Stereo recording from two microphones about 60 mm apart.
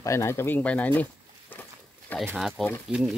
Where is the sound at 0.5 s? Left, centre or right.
Left.